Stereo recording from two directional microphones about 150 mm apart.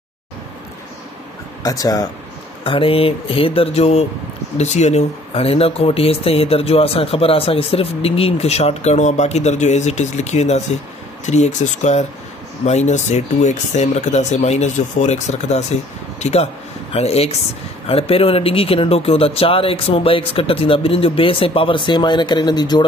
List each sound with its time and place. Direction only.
1.6 s speech: 25° left (ahead or behind)
2.6 s speech: 35° left (ahead or behind)